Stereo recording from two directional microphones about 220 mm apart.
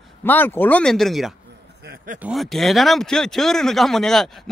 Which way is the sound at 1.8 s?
45° right (ahead or behind).